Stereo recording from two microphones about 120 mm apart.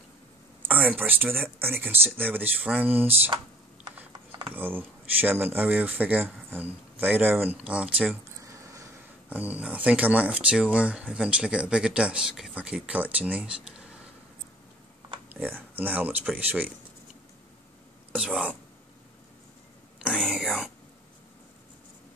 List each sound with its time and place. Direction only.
0.7 s speech: 15° right (ahead or behind)
4.6 s speech: 15° right (ahead or behind)
8.4 s a sound: 25° right (ahead or behind)
9.3 s speech: 10° right (ahead or behind)
15.2 s speech: 15° right (ahead or behind)
18.1 s whispering: 10° right (ahead or behind)
20.2 s whispering: centre (ahead or behind)